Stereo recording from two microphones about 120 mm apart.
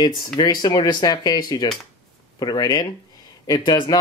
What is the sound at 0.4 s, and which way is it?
Speech, 35° left (ahead or behind).